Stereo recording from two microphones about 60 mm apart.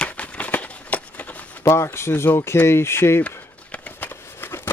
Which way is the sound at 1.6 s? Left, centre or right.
Left.